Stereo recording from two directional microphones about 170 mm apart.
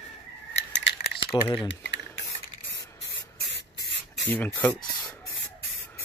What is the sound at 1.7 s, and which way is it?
Speech, 90° left.